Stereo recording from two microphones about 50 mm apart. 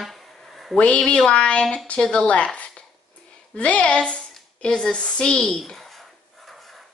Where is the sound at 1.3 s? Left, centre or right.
Left.